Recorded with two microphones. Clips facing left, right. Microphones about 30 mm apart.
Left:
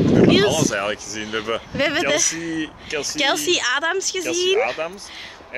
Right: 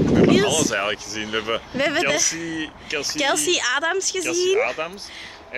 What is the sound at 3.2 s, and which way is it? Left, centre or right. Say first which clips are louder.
Speech: left 2 dB; centre.